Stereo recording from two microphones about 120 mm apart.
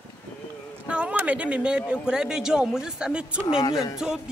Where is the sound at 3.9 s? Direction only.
5° right (ahead or behind).